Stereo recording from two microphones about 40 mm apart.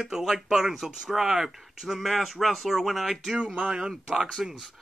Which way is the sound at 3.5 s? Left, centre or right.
Right.